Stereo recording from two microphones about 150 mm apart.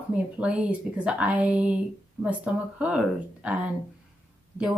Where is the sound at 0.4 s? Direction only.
10° right (ahead or behind).